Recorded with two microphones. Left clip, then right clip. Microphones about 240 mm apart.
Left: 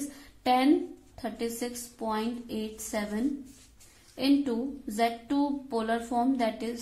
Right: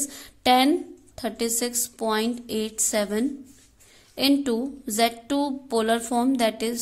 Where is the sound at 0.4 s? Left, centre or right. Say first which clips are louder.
Right 7 dB; right.